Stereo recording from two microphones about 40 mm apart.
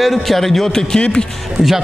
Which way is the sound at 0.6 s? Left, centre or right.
Centre.